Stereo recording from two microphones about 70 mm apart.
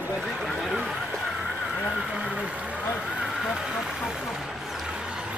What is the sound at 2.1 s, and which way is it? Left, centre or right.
Vehicle, centre.